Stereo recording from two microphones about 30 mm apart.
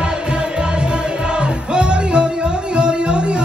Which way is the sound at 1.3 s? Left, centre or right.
Right.